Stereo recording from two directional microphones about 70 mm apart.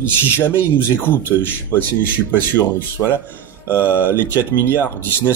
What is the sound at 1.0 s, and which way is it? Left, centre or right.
Speech, left.